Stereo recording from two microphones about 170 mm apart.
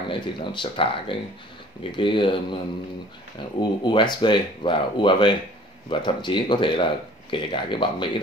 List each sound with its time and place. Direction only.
0.5 s speech: 30° left (ahead or behind)